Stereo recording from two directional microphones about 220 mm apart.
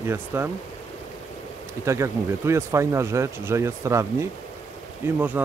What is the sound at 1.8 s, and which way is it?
Speech, 15° right (ahead or behind).